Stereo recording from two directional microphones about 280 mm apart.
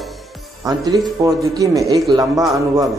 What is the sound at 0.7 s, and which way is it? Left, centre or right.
Speech, centre.